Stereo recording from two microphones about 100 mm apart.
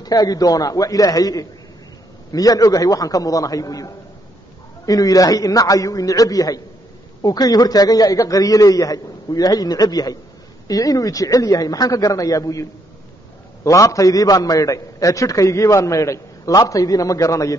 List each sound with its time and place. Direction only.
0.0 s a man's voice: 40° left (ahead or behind)
13.7 s a man's voice: 35° left (ahead or behind)